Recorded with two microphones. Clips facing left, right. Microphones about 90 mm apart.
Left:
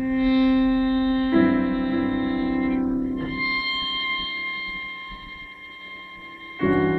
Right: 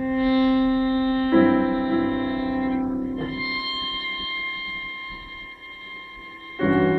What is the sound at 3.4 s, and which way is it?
Music, 25° right (ahead or behind).